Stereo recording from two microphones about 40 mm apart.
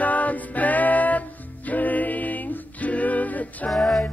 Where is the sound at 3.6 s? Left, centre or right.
Centre.